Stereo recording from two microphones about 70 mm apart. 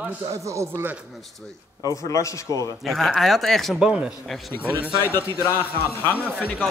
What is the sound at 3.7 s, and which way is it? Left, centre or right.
Speech, centre.